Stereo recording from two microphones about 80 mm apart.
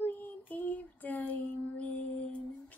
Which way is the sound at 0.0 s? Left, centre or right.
Left.